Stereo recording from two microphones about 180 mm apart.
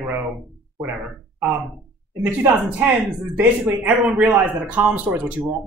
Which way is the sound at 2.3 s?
10° right (ahead or behind).